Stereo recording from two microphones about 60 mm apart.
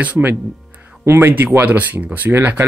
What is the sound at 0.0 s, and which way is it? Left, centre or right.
Speech, right.